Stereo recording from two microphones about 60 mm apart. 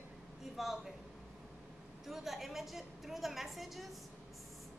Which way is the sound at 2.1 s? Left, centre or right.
Centre.